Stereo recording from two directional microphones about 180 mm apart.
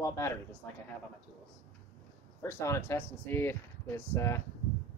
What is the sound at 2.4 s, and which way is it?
Speech, 15° left (ahead or behind).